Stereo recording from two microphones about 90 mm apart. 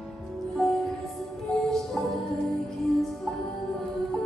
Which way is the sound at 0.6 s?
Centre (ahead or behind).